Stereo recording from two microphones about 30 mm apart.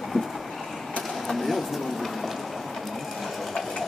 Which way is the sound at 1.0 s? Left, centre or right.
Centre.